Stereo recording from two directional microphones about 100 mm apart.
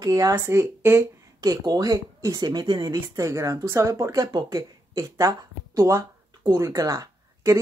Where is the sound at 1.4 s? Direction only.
40° right (ahead or behind).